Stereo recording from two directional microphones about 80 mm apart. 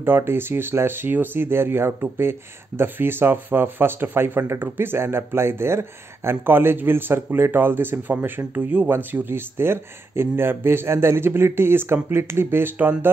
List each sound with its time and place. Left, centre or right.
0.0 s speech: right